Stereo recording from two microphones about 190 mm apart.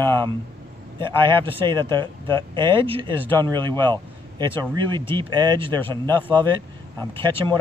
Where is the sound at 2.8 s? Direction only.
25° right (ahead or behind).